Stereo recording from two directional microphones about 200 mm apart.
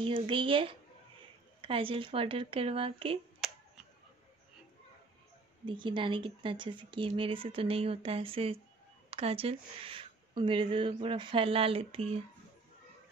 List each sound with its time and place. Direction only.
0.0 s speech: 25° right (ahead or behind)
3.4 s finger snapping: centre (ahead or behind)
5.7 s speech: 25° right (ahead or behind)